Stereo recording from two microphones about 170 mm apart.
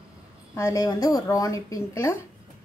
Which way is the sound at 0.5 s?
20° left (ahead or behind).